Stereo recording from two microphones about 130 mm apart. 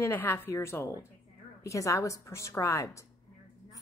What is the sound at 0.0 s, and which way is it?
A woman's voice, 20° left (ahead or behind).